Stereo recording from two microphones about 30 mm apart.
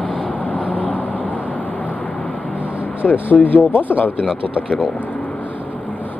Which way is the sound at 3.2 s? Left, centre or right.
Left.